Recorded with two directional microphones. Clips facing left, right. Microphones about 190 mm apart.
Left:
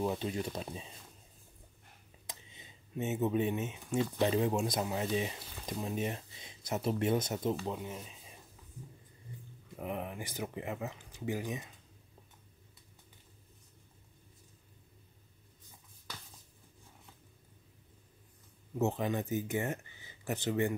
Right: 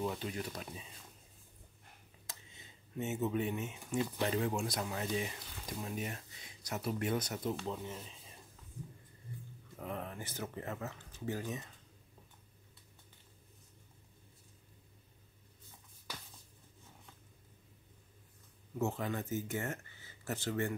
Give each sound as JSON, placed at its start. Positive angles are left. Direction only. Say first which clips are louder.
{"t": 0.0, "sound": "speech", "louder": "left 4 dB", "side_deg": 25}
{"t": 2.2, "sound": "a sound", "louder": "left 3 dB", "side_deg": 20}
{"t": 4.2, "sound": "speech", "louder": "left 6 dB", "side_deg": 20}
{"t": 7.6, "sound": "speech", "louder": "left 2 dB", "side_deg": 10}
{"t": 9.8, "sound": "speech", "louder": "left 3 dB", "side_deg": 15}
{"t": 18.8, "sound": "speech", "louder": "left 4 dB", "side_deg": 20}